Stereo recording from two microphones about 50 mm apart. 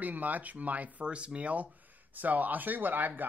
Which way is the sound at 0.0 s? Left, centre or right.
Right.